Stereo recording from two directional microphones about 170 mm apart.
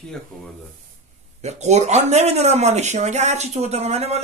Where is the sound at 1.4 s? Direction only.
40° right (ahead or behind).